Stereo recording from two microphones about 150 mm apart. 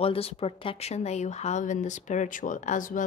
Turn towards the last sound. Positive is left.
turn(degrees=60)  # may be behind; listen again after turning